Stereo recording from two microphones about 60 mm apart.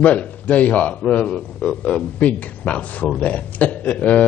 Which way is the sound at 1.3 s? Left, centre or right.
Centre.